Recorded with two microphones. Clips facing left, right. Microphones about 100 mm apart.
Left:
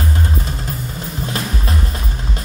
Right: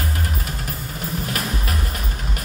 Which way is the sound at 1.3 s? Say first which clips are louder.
Left 3 dB; 30° left (ahead or behind).